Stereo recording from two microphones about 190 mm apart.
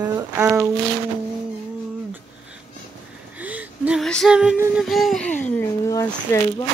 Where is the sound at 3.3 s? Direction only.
10° right (ahead or behind).